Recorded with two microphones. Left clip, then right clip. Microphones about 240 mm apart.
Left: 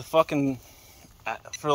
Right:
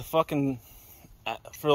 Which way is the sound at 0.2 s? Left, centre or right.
Centre.